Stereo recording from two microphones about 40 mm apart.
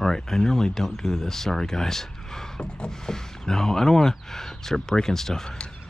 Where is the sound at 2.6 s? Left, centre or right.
Centre.